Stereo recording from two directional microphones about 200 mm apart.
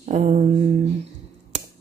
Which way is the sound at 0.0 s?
35° right (ahead or behind).